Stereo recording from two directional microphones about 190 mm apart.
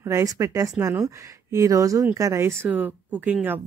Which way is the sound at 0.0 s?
15° right (ahead or behind).